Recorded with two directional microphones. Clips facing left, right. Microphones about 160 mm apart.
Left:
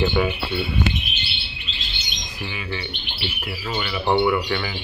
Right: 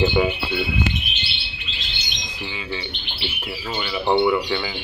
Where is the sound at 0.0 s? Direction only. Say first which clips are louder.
Right 2 dB; 15° right (ahead or behind).